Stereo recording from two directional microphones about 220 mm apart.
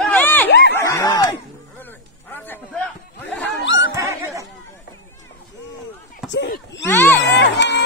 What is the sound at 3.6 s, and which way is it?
Laughter, 55° left (ahead or behind).